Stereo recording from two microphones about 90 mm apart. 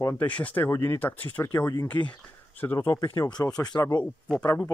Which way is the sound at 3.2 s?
50° left (ahead or behind).